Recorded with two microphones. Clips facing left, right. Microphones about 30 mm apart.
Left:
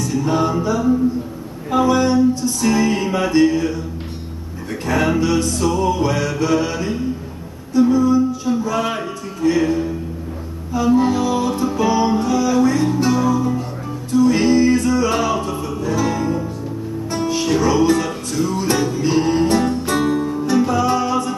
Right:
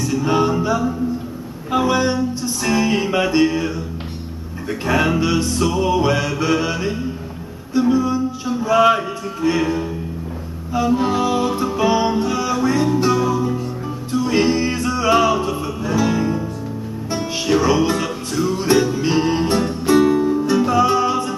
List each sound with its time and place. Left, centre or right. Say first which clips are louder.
0.0 s music: right 1 dB; centre
11.0 s music: left 1 dB; centre